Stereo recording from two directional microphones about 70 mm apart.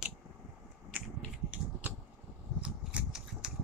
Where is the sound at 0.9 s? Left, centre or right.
Right.